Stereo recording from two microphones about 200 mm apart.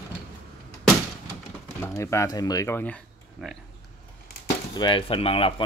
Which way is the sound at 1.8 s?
15° left (ahead or behind).